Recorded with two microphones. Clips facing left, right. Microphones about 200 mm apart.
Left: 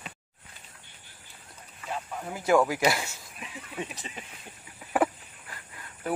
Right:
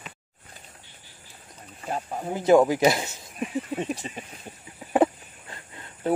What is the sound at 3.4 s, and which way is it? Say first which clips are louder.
Speech: right 9 dB; 45° right (ahead or behind).